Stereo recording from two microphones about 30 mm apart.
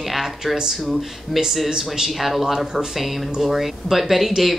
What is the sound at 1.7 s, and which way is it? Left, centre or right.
Speech, centre.